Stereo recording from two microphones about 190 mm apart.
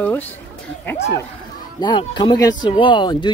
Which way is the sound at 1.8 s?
25° left (ahead or behind).